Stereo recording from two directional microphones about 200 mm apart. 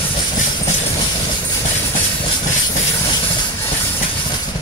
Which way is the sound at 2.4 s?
35° left (ahead or behind).